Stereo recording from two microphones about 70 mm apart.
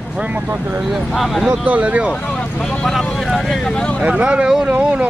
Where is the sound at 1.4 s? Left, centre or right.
Centre.